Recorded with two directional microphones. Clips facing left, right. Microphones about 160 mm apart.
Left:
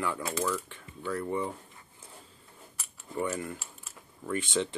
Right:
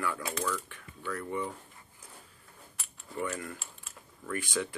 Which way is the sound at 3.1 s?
25° left (ahead or behind).